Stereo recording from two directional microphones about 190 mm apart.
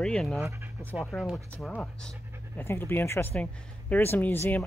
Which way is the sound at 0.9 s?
Centre (ahead or behind).